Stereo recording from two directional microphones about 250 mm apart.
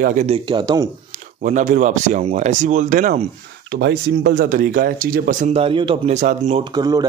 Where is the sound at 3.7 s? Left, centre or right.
Right.